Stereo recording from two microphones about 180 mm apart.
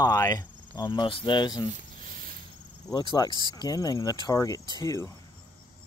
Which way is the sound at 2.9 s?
20° left (ahead or behind).